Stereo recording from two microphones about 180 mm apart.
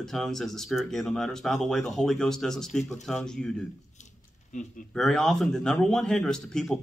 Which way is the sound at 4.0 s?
40° left (ahead or behind).